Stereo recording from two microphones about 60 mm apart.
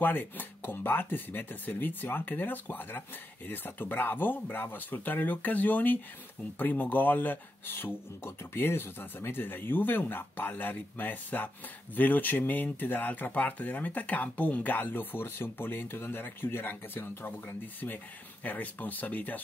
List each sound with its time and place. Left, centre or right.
0.0 s speech: left